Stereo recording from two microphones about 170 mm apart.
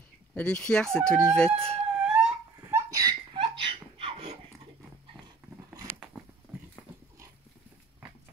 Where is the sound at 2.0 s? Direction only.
10° right (ahead or behind); by 4.3 s 35° right (ahead or behind).